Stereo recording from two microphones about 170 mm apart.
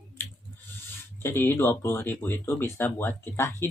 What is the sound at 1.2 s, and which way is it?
Speech, 15° left (ahead or behind).